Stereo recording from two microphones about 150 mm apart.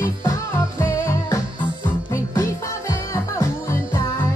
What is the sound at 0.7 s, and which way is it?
Music, 20° left (ahead or behind).